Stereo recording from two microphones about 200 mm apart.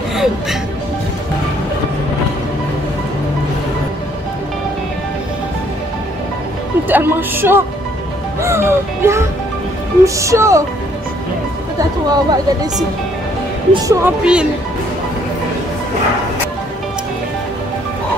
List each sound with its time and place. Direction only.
0.1 s speech: centre (ahead or behind)
6.9 s speech: 10° right (ahead or behind)
12.1 s speech: 20° right (ahead or behind)
13.8 s speech: 5° right (ahead or behind)